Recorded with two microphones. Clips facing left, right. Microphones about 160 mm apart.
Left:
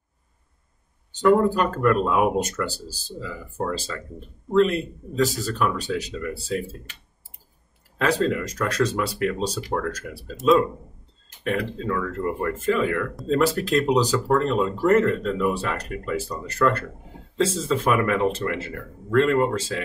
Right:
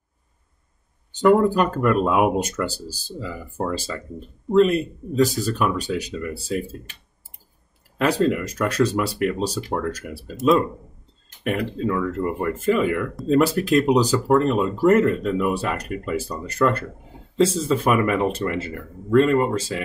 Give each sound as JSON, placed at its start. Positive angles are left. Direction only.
{"t": 1.5, "sound": "speech", "side_deg": -10}
{"t": 8.0, "sound": "speech", "side_deg": -10}